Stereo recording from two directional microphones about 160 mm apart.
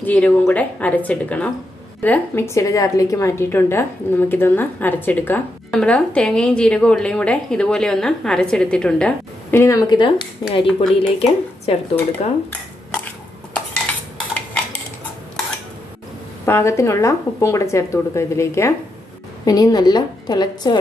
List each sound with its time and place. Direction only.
0.0 s a woman's voice: 10° left (ahead or behind); by 12.3 s 40° left (ahead or behind)
16.4 s a woman's voice: 15° left (ahead or behind)